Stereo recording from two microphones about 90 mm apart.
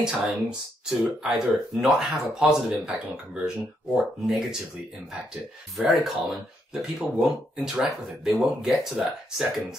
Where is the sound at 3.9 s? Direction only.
5° right (ahead or behind).